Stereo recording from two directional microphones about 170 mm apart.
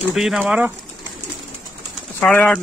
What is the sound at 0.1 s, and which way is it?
Speech, 5° right (ahead or behind).